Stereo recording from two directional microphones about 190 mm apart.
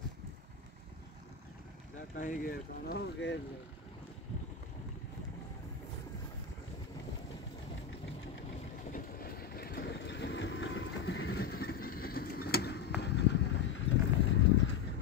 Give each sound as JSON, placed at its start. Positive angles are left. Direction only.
{"t": 2.1, "sound": "speech", "side_deg": 45}
{"t": 8.9, "sound": "vehicle", "side_deg": 55}